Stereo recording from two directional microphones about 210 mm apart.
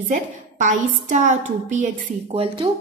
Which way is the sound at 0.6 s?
35° right (ahead or behind).